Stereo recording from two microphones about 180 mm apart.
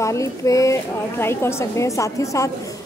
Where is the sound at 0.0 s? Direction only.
15° left (ahead or behind).